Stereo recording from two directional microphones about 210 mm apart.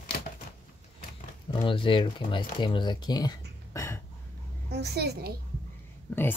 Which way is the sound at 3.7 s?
15° left (ahead or behind).